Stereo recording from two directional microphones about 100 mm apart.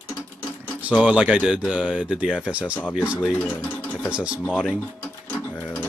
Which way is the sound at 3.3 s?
10° left (ahead or behind).